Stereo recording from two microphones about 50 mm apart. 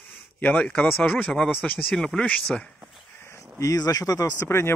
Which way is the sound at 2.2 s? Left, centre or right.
Left.